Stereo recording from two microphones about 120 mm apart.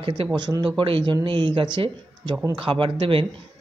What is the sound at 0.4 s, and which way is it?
Speech, 40° right (ahead or behind).